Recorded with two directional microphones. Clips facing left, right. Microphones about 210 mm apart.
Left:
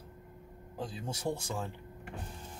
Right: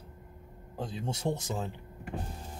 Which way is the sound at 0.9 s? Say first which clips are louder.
Right 4 dB; 25° right (ahead or behind).